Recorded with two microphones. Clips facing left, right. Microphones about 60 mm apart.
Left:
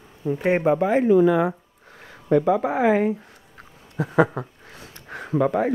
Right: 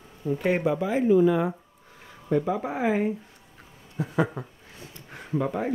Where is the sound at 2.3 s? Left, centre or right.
Left.